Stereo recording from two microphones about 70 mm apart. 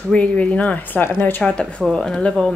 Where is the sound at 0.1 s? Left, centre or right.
Centre.